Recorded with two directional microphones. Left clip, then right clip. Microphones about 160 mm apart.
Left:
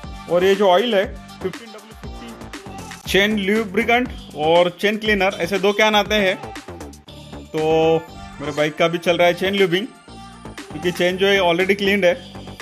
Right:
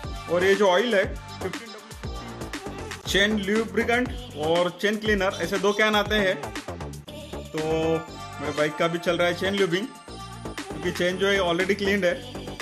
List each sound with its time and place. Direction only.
0.3 s speech: 15° left (ahead or behind)
3.1 s speech: 20° left (ahead or behind)
7.6 s speech: 15° left (ahead or behind)
11.0 s speech: 15° left (ahead or behind)